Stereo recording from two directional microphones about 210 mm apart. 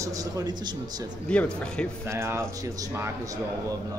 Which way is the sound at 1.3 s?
5° left (ahead or behind).